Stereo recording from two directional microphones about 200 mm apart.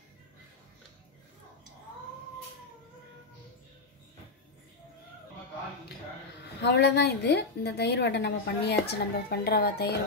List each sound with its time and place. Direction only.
6.6 s a woman's voice: 55° left (ahead or behind)